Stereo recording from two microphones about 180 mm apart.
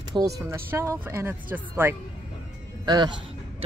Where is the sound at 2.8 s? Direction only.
25° right (ahead or behind).